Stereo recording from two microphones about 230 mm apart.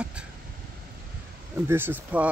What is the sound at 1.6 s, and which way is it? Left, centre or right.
Speech, centre.